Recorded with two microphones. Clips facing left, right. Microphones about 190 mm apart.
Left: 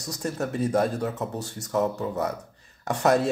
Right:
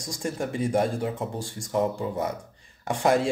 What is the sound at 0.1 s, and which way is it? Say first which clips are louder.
Speech: left 1 dB; 10° right (ahead or behind).